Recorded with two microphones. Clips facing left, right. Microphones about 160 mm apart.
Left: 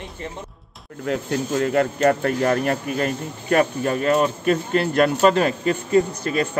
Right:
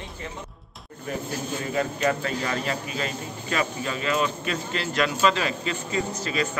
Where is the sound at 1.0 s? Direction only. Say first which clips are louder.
Left 7 dB; 80° left.